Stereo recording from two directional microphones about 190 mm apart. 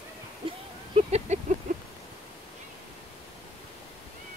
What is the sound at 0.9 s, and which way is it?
Speech, 35° right (ahead or behind).